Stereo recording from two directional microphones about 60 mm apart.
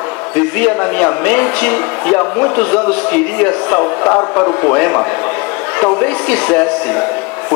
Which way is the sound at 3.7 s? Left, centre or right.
Left.